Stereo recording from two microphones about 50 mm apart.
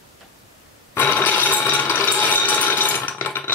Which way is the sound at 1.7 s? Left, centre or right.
Left.